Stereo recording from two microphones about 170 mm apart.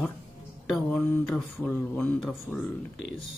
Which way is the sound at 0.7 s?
5° left (ahead or behind).